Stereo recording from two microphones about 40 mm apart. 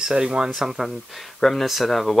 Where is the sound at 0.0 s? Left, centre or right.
Centre.